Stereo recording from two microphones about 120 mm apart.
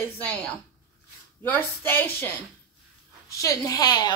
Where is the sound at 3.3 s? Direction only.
25° left (ahead or behind).